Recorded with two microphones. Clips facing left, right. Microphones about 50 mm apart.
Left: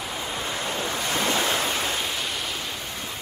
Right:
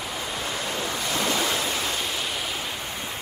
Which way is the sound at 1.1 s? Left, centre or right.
Left.